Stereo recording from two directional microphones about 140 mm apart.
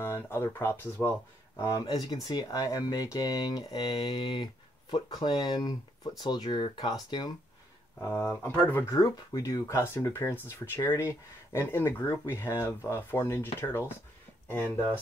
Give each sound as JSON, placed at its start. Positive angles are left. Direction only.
{"t": 0.0, "sound": "speech", "side_deg": 15}
{"t": 1.6, "sound": "speech", "side_deg": 30}
{"t": 8.0, "sound": "speech", "side_deg": 15}
{"t": 8.9, "sound": "speech", "side_deg": 25}